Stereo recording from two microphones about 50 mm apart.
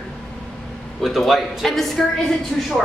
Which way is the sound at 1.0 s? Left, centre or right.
Centre.